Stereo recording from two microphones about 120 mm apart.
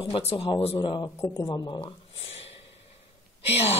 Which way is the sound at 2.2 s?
55° left (ahead or behind).